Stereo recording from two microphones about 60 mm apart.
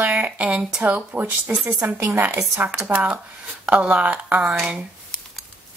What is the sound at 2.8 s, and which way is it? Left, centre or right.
A woman's voice, right.